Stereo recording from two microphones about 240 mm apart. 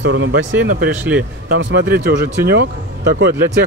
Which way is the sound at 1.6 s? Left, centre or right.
Right.